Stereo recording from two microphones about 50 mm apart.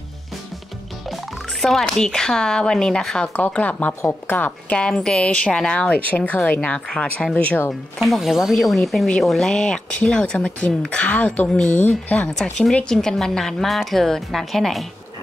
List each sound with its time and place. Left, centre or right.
1.0 s speech: centre
3.3 s speech: left
4.6 s speech: centre
6.0 s speech: left
8.0 s speech: centre
9.6 s speech: centre
12.4 s speech: centre